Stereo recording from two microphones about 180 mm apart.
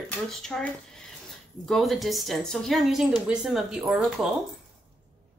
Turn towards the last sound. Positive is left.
turn(degrees=-5)  # may be behind; listen again after turning